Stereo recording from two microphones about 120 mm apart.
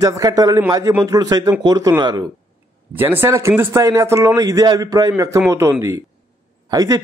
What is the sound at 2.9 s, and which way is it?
A man's voice, 15° right (ahead or behind).